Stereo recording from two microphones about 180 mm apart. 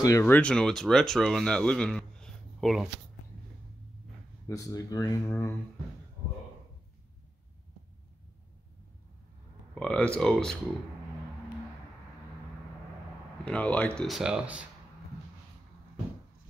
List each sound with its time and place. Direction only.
0.0 s speech: 15° left (ahead or behind)
4.5 s speech: 20° left (ahead or behind)
9.8 s speech: 5° left (ahead or behind)
13.5 s speech: 5° left (ahead or behind)